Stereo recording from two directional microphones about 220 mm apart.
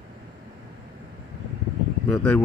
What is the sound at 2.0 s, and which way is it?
Speech, 5° left (ahead or behind).